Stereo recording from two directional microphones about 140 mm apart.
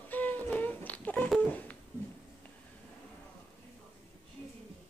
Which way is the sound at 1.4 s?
10° left (ahead or behind).